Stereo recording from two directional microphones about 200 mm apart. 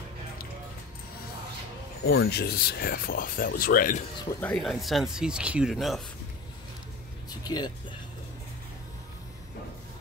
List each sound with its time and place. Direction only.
2.0 s speech: 60° left (ahead or behind); by 4.0 s 45° left (ahead or behind)
4.2 s speech: 10° left (ahead or behind)
7.2 s vehicle: 20° left (ahead or behind)